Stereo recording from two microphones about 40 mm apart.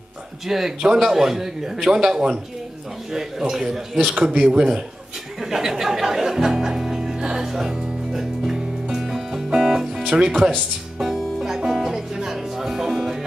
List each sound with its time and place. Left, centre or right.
0.5 s a man's voice: centre
4.2 s speech: right
5.4 s music: centre
10.0 s speech: centre
11.0 s music: centre